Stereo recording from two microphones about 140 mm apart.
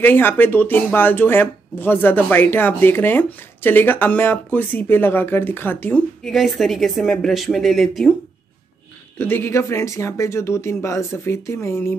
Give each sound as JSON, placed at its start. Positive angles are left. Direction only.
{"t": 0.0, "sound": "speech", "side_deg": 15}
{"t": 9.2, "sound": "speech", "side_deg": 15}